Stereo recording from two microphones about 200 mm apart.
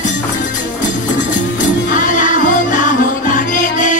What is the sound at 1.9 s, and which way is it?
Music, 40° left (ahead or behind).